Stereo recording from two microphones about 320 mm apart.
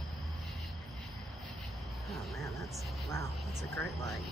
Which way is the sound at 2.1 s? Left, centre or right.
Centre.